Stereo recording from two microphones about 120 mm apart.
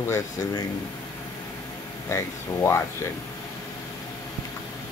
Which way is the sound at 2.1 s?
25° left (ahead or behind).